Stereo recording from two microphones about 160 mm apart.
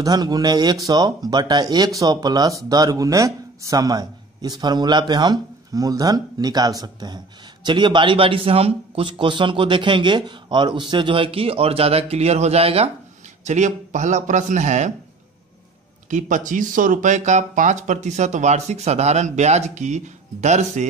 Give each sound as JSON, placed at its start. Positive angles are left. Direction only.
{"t": 0.0, "sound": "a man's voice", "side_deg": -25}
{"t": 16.1, "sound": "speech", "side_deg": -50}